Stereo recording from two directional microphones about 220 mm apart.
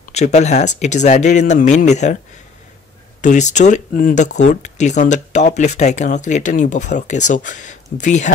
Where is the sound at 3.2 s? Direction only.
35° left (ahead or behind).